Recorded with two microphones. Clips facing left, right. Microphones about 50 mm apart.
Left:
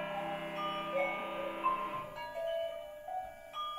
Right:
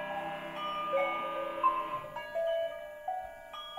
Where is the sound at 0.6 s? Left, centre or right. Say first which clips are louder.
Right 5 dB; left.